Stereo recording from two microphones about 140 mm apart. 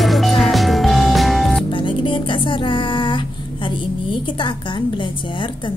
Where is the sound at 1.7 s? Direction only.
35° left (ahead or behind).